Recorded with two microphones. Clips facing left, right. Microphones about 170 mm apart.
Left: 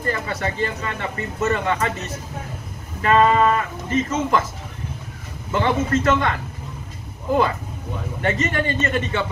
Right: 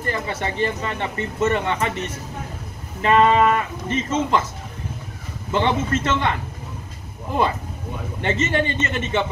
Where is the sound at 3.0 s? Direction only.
20° right (ahead or behind).